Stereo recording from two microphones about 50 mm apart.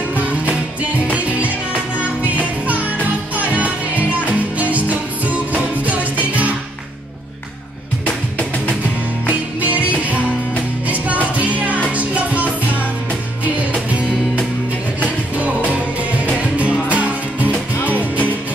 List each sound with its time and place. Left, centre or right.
0.1 s music: right
8.0 s music: left
9.3 s music: right
11.3 s music: right
15.0 s music: right